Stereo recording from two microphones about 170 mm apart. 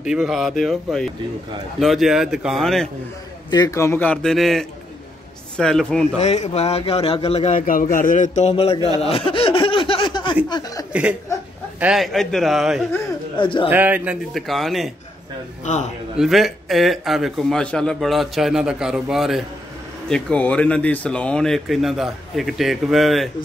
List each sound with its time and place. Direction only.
0.0 s speech: 5° right (ahead or behind)
3.4 s a man's voice: 20° left (ahead or behind); by 6.0 s 5° left (ahead or behind)
6.1 s a man's voice: 40° left (ahead or behind)
7.5 s a man's voice: 50° left (ahead or behind); by 8.9 s 35° left (ahead or behind)
9.1 s laughter: 35° left (ahead or behind)
10.9 s speech: 5° right (ahead or behind)
13.4 s speech: 30° left (ahead or behind)
13.7 s speech: 10° right (ahead or behind)
15.6 s a man's voice: 45° left (ahead or behind)
16.2 s speech: centre (ahead or behind)